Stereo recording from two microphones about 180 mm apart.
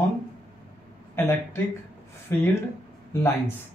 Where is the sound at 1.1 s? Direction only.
10° left (ahead or behind).